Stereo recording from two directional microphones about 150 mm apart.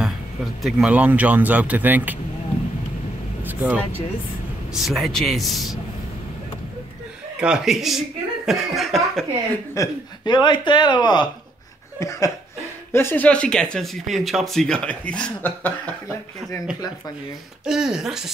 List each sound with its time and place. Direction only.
0.6 s speech: 5° right (ahead or behind)
3.4 s speech: 10° right (ahead or behind)
4.7 s speech: centre (ahead or behind)
7.3 s speech: 5° right (ahead or behind)
9.8 s speech: 30° left (ahead or behind)
12.0 s speech: 20° left (ahead or behind)
17.6 s speech: 5° right (ahead or behind)